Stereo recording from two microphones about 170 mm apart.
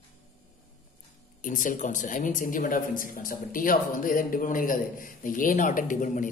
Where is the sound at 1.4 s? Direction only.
50° left (ahead or behind).